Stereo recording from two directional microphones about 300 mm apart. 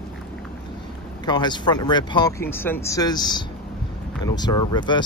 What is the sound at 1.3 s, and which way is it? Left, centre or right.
Speech, centre.